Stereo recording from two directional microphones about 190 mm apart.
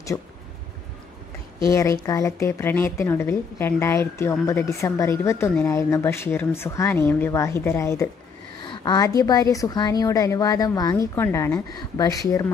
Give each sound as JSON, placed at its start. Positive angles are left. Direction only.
{"t": 1.6, "sound": "a woman's voice", "side_deg": 15}